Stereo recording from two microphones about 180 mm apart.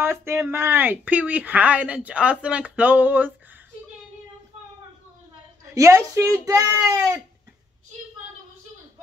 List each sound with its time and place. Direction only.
0.0 s speech: 15° right (ahead or behind)
5.8 s speech: 15° right (ahead or behind)